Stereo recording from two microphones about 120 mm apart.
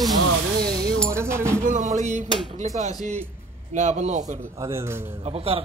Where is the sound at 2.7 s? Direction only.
75° right (ahead or behind).